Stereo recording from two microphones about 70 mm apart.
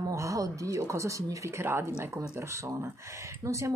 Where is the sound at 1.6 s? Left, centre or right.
Right.